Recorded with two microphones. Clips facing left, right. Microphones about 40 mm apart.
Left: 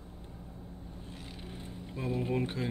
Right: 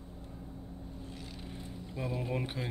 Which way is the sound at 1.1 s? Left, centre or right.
Left.